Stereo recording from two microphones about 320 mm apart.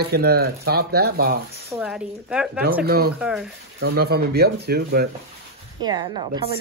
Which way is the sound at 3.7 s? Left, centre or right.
Right.